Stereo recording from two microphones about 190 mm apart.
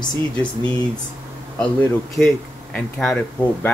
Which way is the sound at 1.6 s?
5° left (ahead or behind).